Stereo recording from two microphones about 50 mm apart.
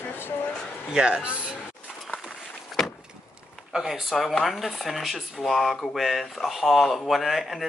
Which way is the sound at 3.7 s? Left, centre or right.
Centre.